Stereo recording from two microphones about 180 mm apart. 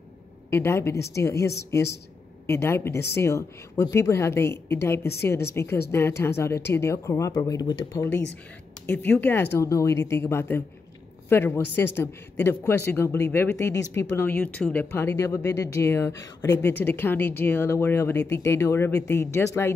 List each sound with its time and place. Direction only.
0.5 s a man's voice: 15° left (ahead or behind)
8.8 s a man's voice: 5° left (ahead or behind)